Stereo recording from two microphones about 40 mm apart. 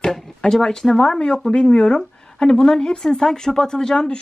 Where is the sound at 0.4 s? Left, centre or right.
Centre.